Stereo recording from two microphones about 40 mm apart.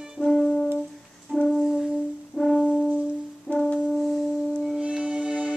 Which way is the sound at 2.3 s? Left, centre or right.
Centre.